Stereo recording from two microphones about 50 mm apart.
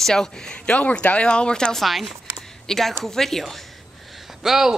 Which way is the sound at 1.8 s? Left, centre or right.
Centre.